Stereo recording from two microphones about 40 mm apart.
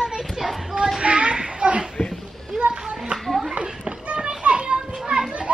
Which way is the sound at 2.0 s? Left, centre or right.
Centre.